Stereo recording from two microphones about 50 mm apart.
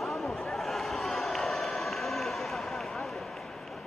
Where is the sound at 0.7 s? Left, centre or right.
Centre.